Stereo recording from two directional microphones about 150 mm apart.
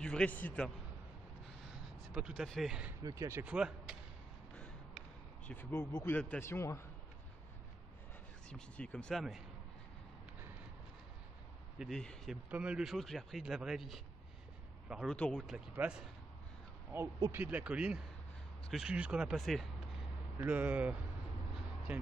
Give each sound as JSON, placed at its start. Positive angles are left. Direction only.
{"t": 0.0, "sound": "speech", "side_deg": 5}
{"t": 2.1, "sound": "speech", "side_deg": 0}
{"t": 3.0, "sound": "speech", "side_deg": -25}
{"t": 3.4, "sound": "speech", "side_deg": -5}
{"t": 5.5, "sound": "speech", "side_deg": 15}
{"t": 8.5, "sound": "speech", "side_deg": 5}
{"t": 11.8, "sound": "speech", "side_deg": 5}
{"t": 12.4, "sound": "speech", "side_deg": -10}
{"t": 15.1, "sound": "speech", "side_deg": 10}
{"t": 15.4, "sound": "speech", "side_deg": -5}
{"t": 17.3, "sound": "speech", "side_deg": -10}
{"t": 20.3, "sound": "speech", "side_deg": -10}